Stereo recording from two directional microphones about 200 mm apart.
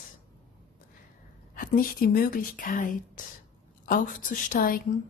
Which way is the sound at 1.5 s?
45° left (ahead or behind).